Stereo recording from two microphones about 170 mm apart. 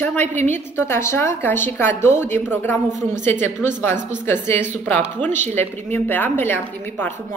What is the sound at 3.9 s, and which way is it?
Speech, 45° right (ahead or behind).